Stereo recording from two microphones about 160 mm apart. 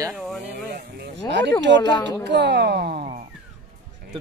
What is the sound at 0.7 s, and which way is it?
Speech, 85° right.